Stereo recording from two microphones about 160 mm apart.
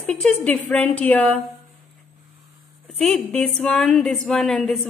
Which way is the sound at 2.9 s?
Centre (ahead or behind).